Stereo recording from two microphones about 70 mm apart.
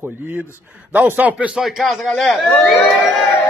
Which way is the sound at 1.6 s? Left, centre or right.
Centre.